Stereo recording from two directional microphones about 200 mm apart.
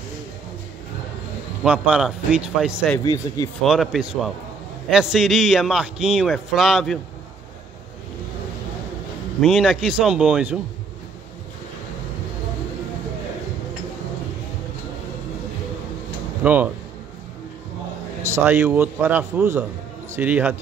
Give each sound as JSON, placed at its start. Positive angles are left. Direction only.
{"t": 1.6, "sound": "a man's voice", "side_deg": -5}
{"t": 3.0, "sound": "speech", "side_deg": 20}
{"t": 3.6, "sound": "a man's voice", "side_deg": 0}
{"t": 9.4, "sound": "a man's voice", "side_deg": 0}
{"t": 16.4, "sound": "speech", "side_deg": -10}
{"t": 18.3, "sound": "speech", "side_deg": -10}